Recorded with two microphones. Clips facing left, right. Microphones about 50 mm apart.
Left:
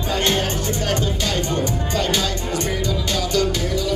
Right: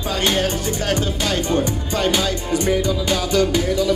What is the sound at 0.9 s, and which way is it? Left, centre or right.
Music, centre.